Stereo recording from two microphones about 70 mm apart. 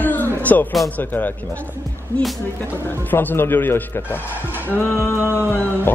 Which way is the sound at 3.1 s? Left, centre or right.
Left.